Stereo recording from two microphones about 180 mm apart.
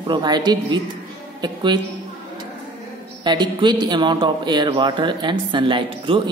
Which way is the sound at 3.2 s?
25° right (ahead or behind).